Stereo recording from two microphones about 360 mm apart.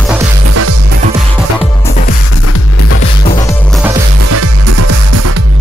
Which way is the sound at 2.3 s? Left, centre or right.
Left.